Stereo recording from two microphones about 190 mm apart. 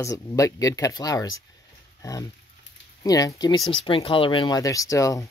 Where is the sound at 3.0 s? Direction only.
20° left (ahead or behind).